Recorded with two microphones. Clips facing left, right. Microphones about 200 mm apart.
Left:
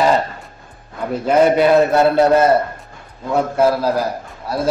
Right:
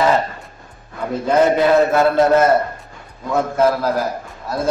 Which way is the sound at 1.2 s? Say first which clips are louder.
Left 2 dB; 15° left (ahead or behind).